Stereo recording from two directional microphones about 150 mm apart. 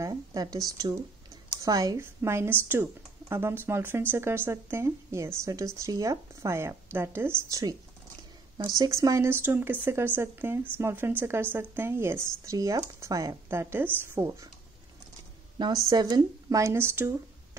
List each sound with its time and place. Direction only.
0.0 s speech: 25° right (ahead or behind)
15.6 s a woman's voice: 30° right (ahead or behind)